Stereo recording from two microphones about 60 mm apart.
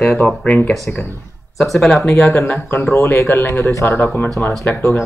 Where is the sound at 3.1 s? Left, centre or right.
Left.